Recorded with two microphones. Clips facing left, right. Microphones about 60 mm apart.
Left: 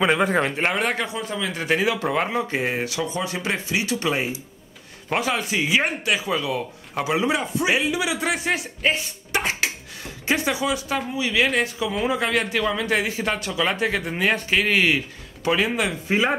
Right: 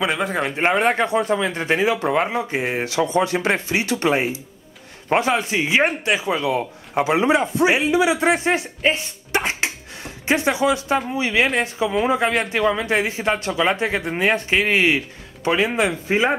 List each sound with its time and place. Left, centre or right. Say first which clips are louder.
0.0 s speech: left 2 dB; centre
0.5 s speech: right 5 dB; centre
1.0 s speech: right 9 dB; right
1.3 s speech: right 4 dB; right; by 2.6 s centre
2.7 s speech: right 4 dB; right
3.1 s speech: right 7 dB; right
8.9 s a sound: right 2 dB; right
11.1 s speech: left 1 dB; right
16.1 s speech: right 1 dB; centre